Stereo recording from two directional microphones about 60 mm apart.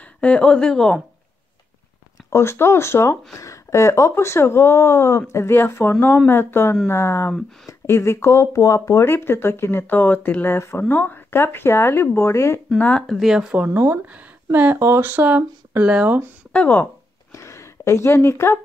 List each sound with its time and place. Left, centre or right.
0.2 s speech: centre
2.3 s speech: left
4.1 s speech: left
9.0 s speech: left
12.7 s speech: left
13.0 s speech: centre
13.7 s speech: right
14.8 s speech: right
15.8 s speech: right
16.5 s speech: left
17.3 s a sound: left